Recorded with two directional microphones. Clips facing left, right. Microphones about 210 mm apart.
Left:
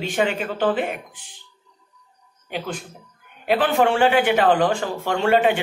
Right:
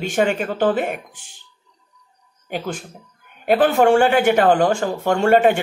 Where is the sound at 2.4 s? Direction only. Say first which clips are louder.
Right 3 dB; 45° right (ahead or behind).